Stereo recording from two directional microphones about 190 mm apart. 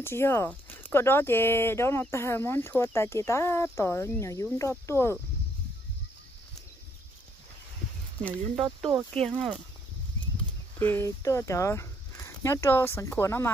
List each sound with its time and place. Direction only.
0.0 s speech: 15° left (ahead or behind)
9.1 s speech: 5° left (ahead or behind)
10.8 s speech: 15° left (ahead or behind)